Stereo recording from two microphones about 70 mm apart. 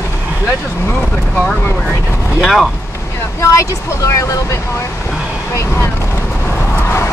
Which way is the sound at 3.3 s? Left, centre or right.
Left.